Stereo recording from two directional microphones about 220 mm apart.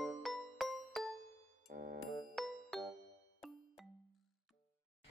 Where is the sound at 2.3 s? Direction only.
Centre (ahead or behind).